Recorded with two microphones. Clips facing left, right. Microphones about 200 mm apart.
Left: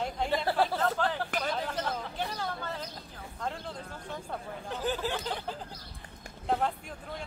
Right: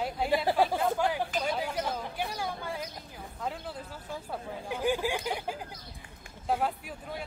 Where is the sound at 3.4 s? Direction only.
5° right (ahead or behind).